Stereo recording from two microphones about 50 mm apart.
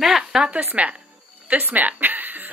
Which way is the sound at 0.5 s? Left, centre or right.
Right.